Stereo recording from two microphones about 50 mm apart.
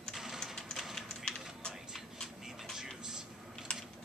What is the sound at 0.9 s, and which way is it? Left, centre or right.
Typing, centre.